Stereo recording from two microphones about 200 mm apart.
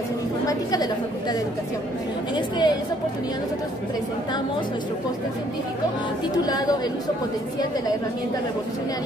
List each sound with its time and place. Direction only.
0.5 s speech: 20° left (ahead or behind)
2.3 s speech: 20° left (ahead or behind)
6.3 s speech: 20° left (ahead or behind)